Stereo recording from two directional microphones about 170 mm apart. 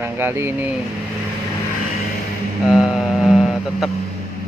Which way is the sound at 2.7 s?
Centre (ahead or behind).